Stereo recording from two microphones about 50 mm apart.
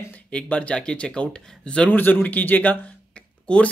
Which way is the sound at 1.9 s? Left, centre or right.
Left.